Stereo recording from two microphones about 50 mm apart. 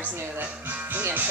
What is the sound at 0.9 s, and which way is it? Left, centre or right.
Music, right.